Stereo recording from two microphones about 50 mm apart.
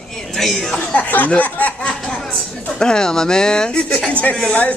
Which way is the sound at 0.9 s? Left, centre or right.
Left.